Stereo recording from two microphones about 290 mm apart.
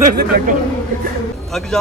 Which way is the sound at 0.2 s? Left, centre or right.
Right.